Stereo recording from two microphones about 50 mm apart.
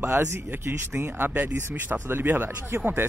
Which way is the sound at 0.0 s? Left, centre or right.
Right.